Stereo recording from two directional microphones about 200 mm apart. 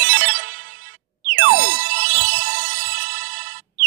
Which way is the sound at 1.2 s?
55° right (ahead or behind).